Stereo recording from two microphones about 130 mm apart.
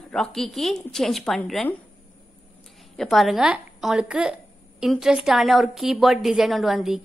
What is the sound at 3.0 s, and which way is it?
A woman's voice, centre (ahead or behind).